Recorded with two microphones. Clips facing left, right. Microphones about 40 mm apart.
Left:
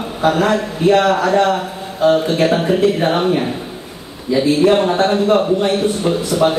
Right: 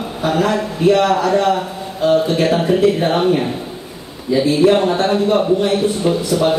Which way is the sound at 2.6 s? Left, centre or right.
Centre.